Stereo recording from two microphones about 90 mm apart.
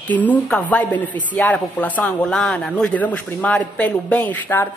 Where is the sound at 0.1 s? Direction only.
15° left (ahead or behind).